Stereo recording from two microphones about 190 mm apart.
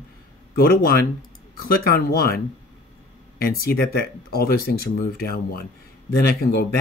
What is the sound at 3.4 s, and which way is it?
Speech, 55° left (ahead or behind).